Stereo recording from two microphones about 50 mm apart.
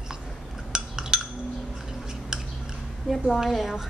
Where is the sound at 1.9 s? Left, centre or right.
Centre.